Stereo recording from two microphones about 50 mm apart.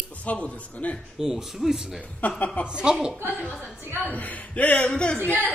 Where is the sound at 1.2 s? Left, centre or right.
Centre.